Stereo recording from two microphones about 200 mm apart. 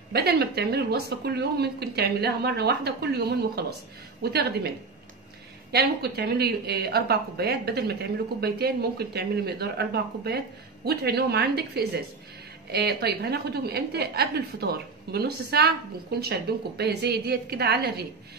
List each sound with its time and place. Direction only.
0.1 s a woman's voice: 55° right (ahead or behind)
5.7 s a woman's voice: 55° right (ahead or behind)